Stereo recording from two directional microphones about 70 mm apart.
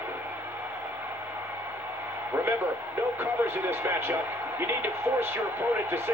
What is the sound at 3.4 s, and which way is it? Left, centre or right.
Speech, right.